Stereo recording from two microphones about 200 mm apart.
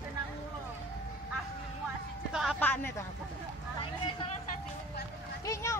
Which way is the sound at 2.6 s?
10° left (ahead or behind).